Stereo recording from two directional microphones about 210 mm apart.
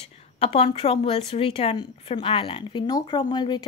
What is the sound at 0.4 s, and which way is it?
A woman's voice, 30° left (ahead or behind).